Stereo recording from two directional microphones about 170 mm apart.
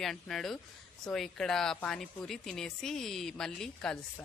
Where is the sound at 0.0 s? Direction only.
Centre (ahead or behind).